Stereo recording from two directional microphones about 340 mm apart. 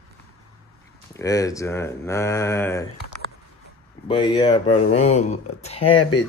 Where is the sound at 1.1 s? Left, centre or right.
Centre.